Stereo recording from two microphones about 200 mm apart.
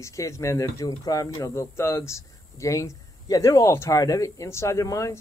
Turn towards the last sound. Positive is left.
turn(degrees=15)  # may be behind; listen again after turning